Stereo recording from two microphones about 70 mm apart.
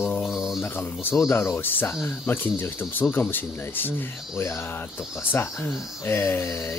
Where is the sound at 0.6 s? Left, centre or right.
Left.